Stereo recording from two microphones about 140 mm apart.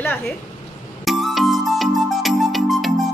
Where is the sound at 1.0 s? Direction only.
Centre (ahead or behind).